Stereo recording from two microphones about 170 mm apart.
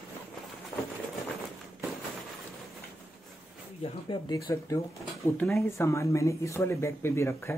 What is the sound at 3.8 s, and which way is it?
Speech, 25° left (ahead or behind).